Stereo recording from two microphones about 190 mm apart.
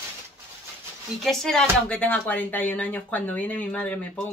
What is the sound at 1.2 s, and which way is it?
Speech, centre (ahead or behind).